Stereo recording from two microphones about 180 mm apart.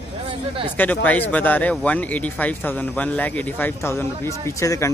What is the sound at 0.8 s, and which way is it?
Speech, 10° left (ahead or behind).